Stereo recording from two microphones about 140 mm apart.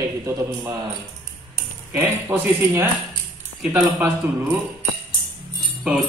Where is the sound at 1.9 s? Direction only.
15° right (ahead or behind).